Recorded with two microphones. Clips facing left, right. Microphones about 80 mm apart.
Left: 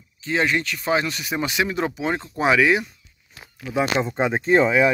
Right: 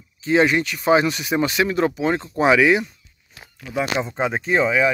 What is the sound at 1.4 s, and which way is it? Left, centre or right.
Speech, centre.